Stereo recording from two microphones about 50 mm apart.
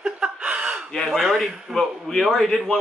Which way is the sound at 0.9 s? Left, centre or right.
Centre.